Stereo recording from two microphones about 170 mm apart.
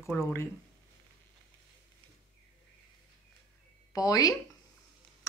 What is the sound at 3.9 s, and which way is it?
Speech, 20° left (ahead or behind).